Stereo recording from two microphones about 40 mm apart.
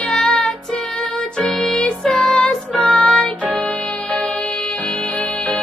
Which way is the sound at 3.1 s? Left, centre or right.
Left.